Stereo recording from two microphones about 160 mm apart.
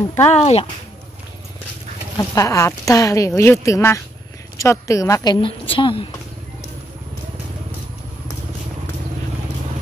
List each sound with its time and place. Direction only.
0.3 s speech: 40° left (ahead or behind)
2.1 s a woman's voice: 20° left (ahead or behind)